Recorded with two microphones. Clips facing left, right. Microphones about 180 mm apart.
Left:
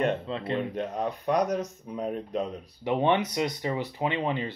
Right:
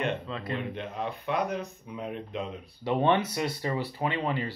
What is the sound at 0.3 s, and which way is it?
Speech, 30° left (ahead or behind).